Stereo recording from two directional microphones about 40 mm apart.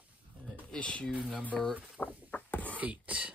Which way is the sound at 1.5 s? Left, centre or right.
Centre.